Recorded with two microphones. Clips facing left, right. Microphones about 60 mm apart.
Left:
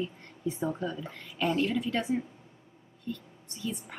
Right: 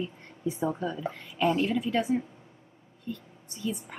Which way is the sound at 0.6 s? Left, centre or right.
Centre.